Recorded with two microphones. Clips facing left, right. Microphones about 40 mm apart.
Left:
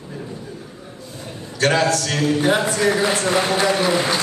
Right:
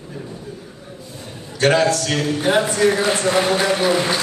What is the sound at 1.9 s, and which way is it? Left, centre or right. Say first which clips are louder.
Speech: left 1 dB; centre.